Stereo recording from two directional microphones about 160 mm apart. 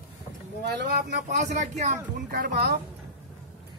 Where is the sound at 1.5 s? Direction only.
45° right (ahead or behind).